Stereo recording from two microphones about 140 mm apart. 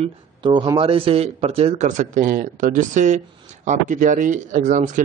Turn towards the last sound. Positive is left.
turn(degrees=-70)  # may be behind; listen again after turning